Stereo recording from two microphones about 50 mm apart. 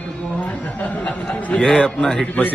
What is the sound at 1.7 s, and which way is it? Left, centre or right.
Speech, centre.